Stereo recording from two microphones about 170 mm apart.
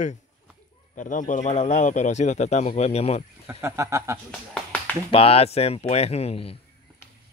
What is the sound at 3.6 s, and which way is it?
Speech, 15° right (ahead or behind).